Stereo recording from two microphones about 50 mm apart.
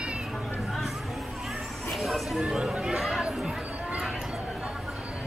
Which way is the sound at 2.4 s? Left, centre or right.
Centre.